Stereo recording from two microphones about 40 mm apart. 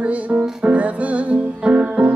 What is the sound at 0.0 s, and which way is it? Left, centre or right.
Speech, right.